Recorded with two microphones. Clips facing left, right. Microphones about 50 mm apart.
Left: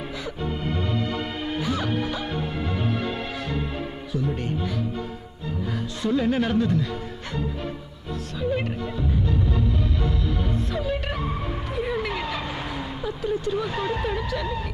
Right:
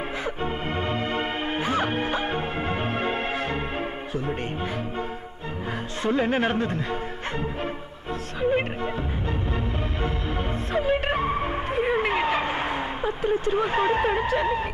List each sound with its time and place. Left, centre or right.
0.4 s music: right
6.0 s speech: right
8.4 s music: right
13.0 s speech: right